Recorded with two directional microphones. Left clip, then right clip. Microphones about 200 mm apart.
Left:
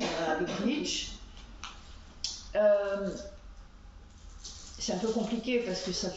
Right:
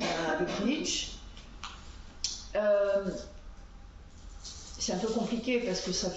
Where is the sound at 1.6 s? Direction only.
5° left (ahead or behind).